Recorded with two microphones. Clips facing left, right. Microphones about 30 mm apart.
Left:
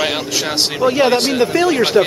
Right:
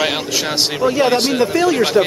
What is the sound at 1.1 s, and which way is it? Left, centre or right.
Speech, centre.